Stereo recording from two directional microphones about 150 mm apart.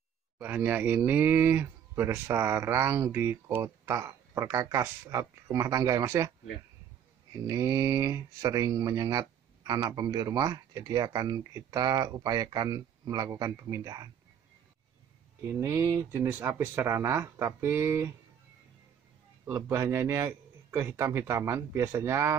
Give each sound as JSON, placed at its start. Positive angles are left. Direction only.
{"t": 0.4, "sound": "speech", "side_deg": -10}
{"t": 7.4, "sound": "speech", "side_deg": -20}
{"t": 15.4, "sound": "speech", "side_deg": -15}
{"t": 19.4, "sound": "speech", "side_deg": -15}